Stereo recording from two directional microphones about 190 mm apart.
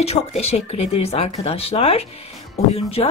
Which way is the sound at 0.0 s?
35° left (ahead or behind).